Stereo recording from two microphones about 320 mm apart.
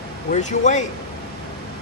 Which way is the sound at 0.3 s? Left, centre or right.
Left.